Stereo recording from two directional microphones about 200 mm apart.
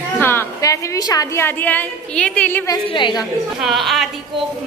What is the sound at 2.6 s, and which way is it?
Speech, 25° left (ahead or behind).